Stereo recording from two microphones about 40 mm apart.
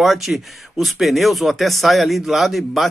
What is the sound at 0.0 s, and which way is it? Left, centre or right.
Speech, centre.